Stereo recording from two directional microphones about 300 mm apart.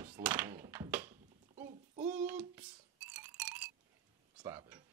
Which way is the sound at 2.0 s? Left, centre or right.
Centre.